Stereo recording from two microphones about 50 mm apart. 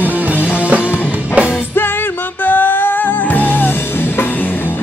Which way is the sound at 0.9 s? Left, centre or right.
Right.